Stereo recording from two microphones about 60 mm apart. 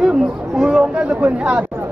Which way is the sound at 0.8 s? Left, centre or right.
Right.